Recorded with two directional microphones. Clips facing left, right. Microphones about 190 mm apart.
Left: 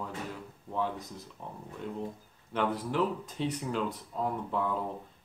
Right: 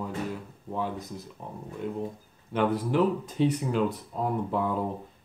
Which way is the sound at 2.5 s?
10° right (ahead or behind).